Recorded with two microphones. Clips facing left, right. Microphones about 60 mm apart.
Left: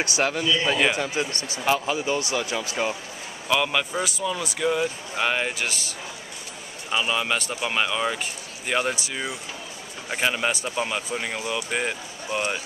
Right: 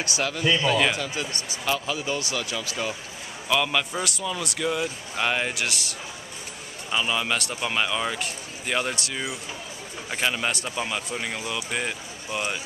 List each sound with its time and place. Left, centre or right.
0.2 s a man's voice: left
3.4 s speech: centre